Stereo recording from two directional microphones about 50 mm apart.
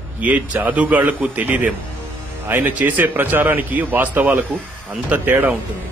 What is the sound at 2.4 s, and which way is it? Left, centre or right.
A man's voice, right.